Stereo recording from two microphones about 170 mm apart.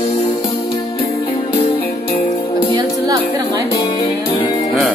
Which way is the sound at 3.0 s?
20° right (ahead or behind).